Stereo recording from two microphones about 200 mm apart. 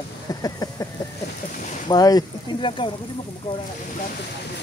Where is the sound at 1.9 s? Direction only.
20° left (ahead or behind).